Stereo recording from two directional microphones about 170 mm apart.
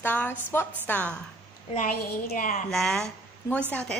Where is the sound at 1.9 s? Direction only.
60° left (ahead or behind).